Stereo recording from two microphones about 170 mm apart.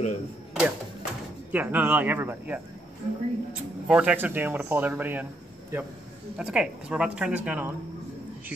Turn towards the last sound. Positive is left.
turn(degrees=-10)  # may be behind; listen again after turning